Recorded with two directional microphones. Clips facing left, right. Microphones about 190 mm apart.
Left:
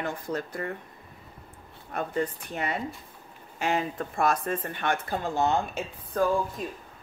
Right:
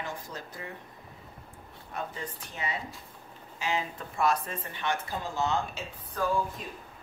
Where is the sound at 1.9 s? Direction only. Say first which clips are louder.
Left 8 dB; 55° left (ahead or behind).